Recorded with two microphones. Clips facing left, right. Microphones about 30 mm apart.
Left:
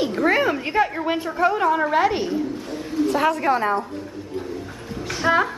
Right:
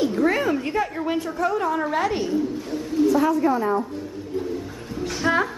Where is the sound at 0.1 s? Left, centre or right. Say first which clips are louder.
Left 1 dB; left.